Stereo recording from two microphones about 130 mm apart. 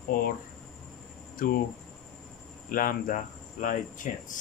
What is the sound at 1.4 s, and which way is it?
Speech, 90° left.